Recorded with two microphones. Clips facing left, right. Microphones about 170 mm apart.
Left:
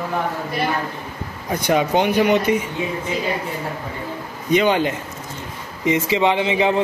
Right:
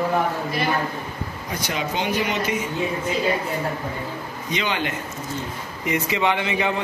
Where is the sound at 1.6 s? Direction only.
55° left (ahead or behind).